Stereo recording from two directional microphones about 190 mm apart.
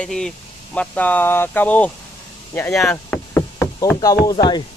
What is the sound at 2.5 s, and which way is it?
Knock, 5° left (ahead or behind).